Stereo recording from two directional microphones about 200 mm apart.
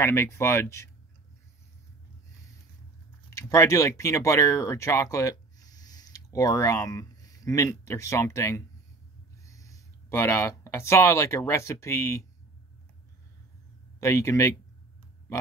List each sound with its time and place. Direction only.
0.0 s speech: 15° left (ahead or behind)
3.3 s speech: 15° left (ahead or behind)
13.9 s speech: 15° left (ahead or behind)